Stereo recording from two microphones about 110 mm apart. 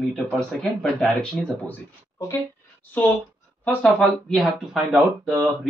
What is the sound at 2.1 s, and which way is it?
A woman's voice, 25° left (ahead or behind).